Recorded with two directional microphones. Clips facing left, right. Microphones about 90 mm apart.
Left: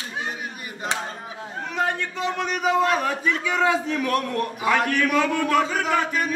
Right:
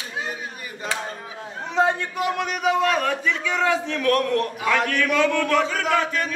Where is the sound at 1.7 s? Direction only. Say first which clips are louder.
Right 5 dB; 15° right (ahead or behind).